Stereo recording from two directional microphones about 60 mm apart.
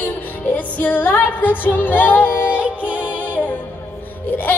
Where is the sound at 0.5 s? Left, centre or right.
Left.